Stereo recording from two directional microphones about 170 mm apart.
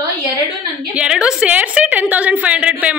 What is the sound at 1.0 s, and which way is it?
A woman's voice, 5° right (ahead or behind).